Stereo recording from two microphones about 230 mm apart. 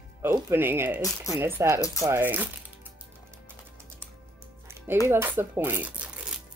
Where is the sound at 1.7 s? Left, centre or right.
Centre.